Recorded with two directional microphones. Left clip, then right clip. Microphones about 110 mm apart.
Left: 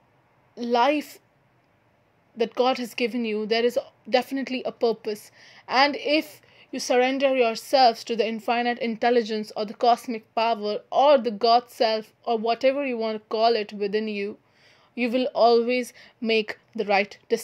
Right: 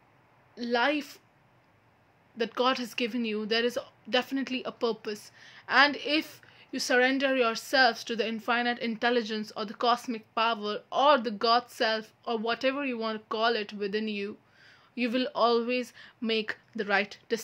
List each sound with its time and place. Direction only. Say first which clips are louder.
0.6 s a woman's voice: left 6 dB; 45° left (ahead or behind)
2.3 s a woman's voice: left 5 dB; 35° left (ahead or behind)